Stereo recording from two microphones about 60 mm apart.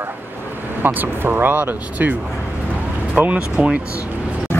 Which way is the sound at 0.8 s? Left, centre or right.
Right.